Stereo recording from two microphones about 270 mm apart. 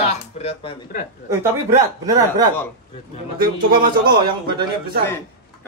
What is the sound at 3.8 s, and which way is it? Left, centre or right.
Speech, right.